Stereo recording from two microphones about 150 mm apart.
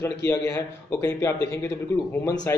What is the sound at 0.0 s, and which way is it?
A man's voice, 20° left (ahead or behind).